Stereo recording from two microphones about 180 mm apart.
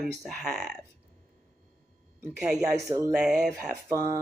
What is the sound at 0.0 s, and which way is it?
Speech, centre (ahead or behind).